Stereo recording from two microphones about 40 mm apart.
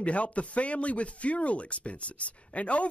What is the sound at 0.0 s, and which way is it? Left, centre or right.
Speech, left.